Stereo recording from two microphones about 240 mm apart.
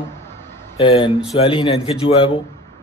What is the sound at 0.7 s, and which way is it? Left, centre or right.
A man's voice, left.